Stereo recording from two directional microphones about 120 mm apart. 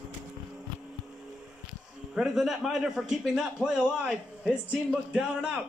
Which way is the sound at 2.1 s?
5° right (ahead or behind).